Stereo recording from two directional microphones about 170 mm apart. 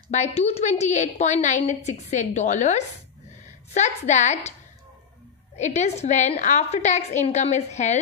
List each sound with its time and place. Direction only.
0.1 s a woman's voice: 40° left (ahead or behind)
5.6 s a woman's voice: 40° left (ahead or behind)